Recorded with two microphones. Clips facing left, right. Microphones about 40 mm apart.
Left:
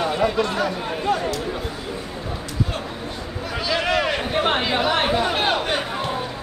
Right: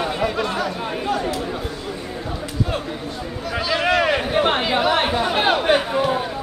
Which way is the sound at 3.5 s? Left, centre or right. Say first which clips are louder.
Right 3 dB; centre.